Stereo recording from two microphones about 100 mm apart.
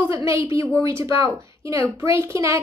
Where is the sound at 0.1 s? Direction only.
30° right (ahead or behind).